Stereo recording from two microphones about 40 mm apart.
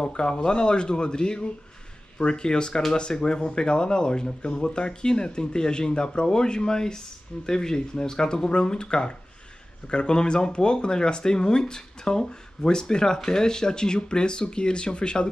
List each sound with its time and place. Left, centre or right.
0.0 s speech: left